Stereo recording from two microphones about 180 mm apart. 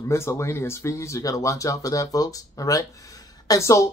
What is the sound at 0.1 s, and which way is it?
Speech, 15° left (ahead or behind).